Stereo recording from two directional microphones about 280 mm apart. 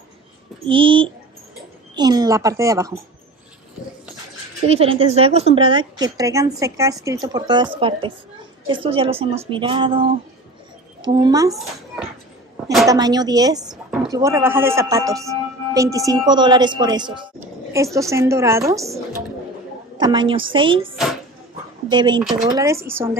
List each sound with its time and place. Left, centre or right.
0.7 s a woman's voice: centre
4.6 s a woman's voice: centre
20.0 s a woman's voice: centre
21.8 s a woman's voice: centre